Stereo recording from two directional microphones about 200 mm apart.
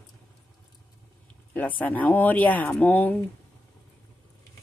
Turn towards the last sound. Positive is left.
turn(degrees=10)  # may be behind; listen again after turning